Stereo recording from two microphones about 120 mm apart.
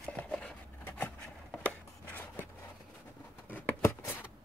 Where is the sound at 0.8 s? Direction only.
15° left (ahead or behind).